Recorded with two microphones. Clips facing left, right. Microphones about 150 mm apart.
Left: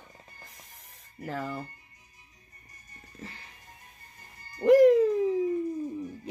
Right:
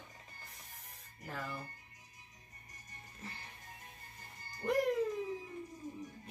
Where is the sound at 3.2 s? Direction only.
90° left.